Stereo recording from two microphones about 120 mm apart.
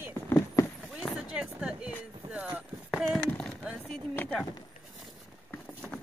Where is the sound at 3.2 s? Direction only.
10° left (ahead or behind).